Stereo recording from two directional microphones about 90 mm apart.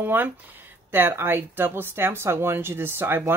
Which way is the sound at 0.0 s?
20° right (ahead or behind).